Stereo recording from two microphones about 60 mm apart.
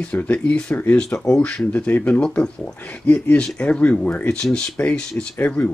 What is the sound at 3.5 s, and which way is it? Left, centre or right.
Speech, centre.